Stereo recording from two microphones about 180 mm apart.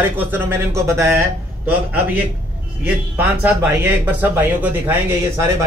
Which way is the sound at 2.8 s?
10° right (ahead or behind).